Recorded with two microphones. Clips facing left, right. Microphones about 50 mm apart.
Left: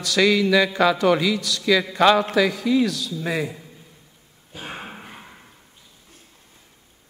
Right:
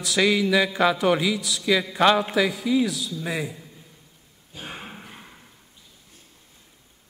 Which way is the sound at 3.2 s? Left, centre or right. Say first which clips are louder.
Left 4 dB; centre.